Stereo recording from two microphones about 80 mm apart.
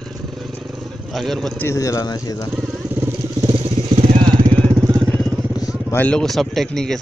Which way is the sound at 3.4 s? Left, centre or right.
Right.